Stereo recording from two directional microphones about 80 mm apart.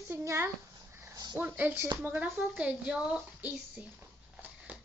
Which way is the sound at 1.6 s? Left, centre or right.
Right.